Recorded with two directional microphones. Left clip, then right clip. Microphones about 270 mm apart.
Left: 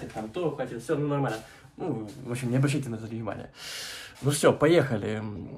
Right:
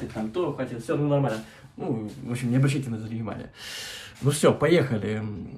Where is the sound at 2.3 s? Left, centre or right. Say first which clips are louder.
Right 1 dB; centre.